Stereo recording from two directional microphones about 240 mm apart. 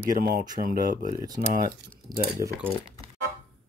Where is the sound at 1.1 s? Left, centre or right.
Centre.